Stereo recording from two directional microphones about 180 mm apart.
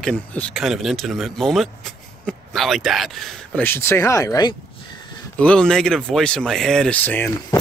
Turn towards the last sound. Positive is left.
turn(degrees=10)  # may be behind; listen again after turning